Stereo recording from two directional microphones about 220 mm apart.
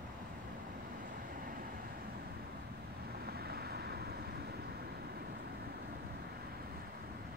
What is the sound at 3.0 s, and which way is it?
Vehicle, 45° right (ahead or behind).